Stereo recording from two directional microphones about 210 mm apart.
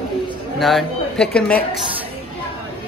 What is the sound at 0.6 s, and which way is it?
A man's voice, centre (ahead or behind).